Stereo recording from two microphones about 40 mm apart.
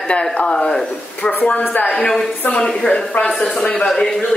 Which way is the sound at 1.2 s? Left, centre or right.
Left.